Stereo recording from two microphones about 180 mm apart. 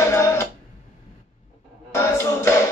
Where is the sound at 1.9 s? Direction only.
15° left (ahead or behind).